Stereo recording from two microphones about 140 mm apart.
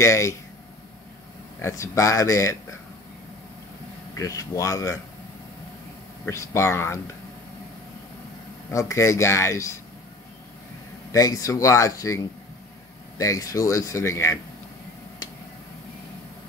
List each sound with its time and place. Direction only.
0.0 s speech: 20° left (ahead or behind)
1.6 s speech: 20° left (ahead or behind)
4.1 s speech: 25° left (ahead or behind)
6.2 s speech: 20° left (ahead or behind)
8.6 s speech: 20° left (ahead or behind)
11.1 s speech: 25° left (ahead or behind)
13.2 s speech: 25° left (ahead or behind)